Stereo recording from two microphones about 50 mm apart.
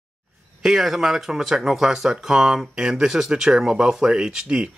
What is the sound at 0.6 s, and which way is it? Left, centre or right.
Speech, centre.